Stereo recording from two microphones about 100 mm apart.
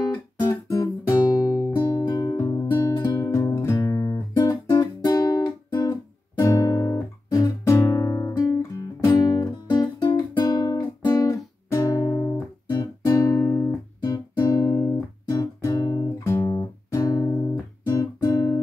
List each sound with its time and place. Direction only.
0.5 s guitar: 35° left (ahead or behind)
1.4 s music: 40° left (ahead or behind)
2.7 s music: 20° left (ahead or behind)
3.1 s music: 35° left (ahead or behind)
4.5 s guitar: 40° left (ahead or behind)
6.4 s guitar: 35° left (ahead or behind)
9.0 s music: 35° left (ahead or behind)
10.4 s guitar: 45° left (ahead or behind)
12.7 s music: 40° left (ahead or behind)
14.4 s guitar: 40° left (ahead or behind)
15.2 s music: 35° left (ahead or behind)
18.2 s music: 45° left (ahead or behind)